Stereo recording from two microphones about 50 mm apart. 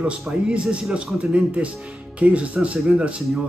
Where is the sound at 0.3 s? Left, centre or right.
Centre.